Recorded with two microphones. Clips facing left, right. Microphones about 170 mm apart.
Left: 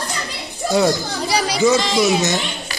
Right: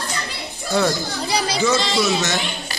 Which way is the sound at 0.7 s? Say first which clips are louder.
Left 3 dB; 20° left (ahead or behind).